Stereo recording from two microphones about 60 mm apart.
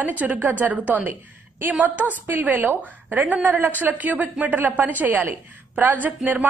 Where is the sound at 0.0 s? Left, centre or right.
Right.